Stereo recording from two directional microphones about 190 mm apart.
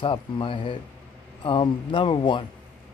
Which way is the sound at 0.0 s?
25° left (ahead or behind).